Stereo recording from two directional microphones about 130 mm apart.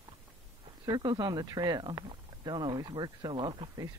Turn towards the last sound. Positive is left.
turn(degrees=-35)  # may be behind; listen again after turning